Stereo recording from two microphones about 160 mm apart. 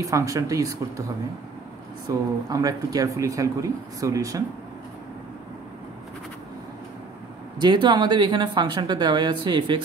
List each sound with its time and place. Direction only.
0.0 s speech: 20° right (ahead or behind)
2.0 s speech: 20° right (ahead or behind)
7.5 s speech: 30° right (ahead or behind)